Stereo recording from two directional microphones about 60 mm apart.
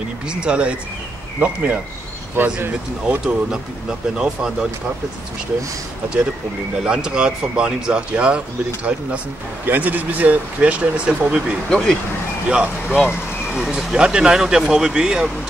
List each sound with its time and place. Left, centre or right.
0.3 s speech: centre
2.4 s speech: right
4.2 s speech: centre
6.8 s speech: centre
11.7 s speech: centre
12.4 s speech: centre